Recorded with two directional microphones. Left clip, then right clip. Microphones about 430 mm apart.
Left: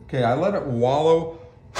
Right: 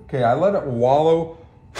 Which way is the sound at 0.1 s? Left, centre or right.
Centre.